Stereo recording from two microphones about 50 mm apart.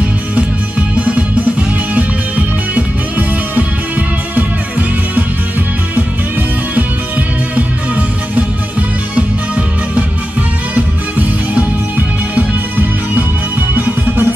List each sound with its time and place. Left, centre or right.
0.9 s music: right
10.7 s music: right
13.1 s music: right